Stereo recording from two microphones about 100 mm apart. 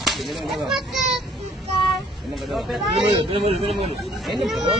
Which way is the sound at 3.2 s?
70° right (ahead or behind).